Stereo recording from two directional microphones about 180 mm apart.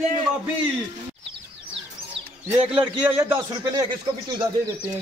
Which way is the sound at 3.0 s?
10° right (ahead or behind).